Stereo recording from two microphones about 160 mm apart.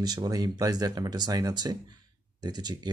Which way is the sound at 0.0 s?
25° right (ahead or behind).